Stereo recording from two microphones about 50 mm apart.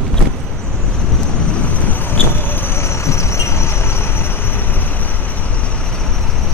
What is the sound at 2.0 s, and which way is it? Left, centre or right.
Vehicle, left.